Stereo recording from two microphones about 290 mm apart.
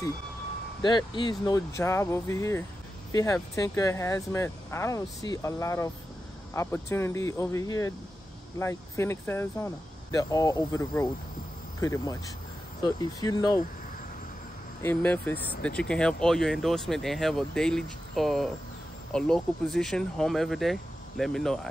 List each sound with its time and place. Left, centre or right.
0.8 s speech: centre
14.8 s speech: centre